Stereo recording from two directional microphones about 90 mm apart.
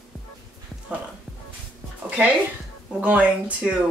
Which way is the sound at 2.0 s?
15° right (ahead or behind).